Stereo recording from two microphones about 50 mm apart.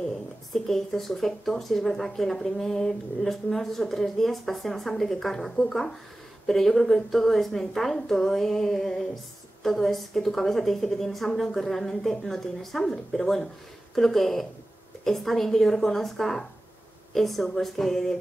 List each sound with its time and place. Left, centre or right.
0.0 s a woman's voice: centre